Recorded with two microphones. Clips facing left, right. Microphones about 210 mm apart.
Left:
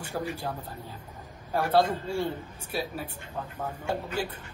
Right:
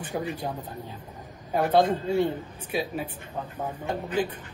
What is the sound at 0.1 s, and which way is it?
Speech, 10° right (ahead or behind).